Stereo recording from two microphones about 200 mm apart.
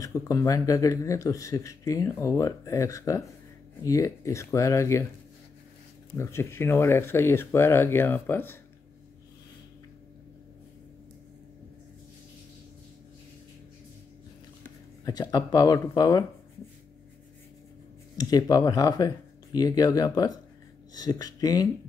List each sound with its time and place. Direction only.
0.0 s a man's voice: 15° left (ahead or behind)
6.1 s a man's voice: 10° left (ahead or behind)
15.0 s speech: 20° left (ahead or behind)
18.1 s speech: 20° left (ahead or behind)